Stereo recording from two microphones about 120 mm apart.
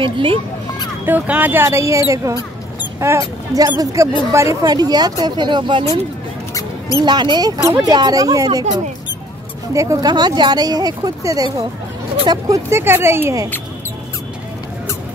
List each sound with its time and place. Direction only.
0.0 s a child's voice: 45° right (ahead or behind)
1.0 s speech: 15° right (ahead or behind); by 5.9 s 40° right (ahead or behind)
7.1 s speech: 40° right (ahead or behind)
9.8 s speech: 30° right (ahead or behind)